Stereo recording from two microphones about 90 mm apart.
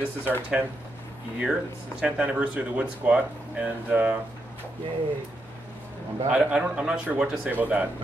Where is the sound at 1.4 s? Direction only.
10° right (ahead or behind).